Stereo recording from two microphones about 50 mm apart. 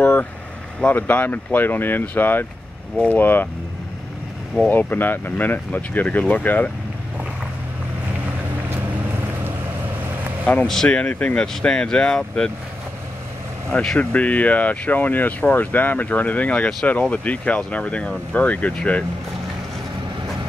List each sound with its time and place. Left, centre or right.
0.0 s speech: left
0.9 s speech: left
4.6 s speech: left
10.5 s speech: left
11.3 s speech: centre
13.9 s speech: left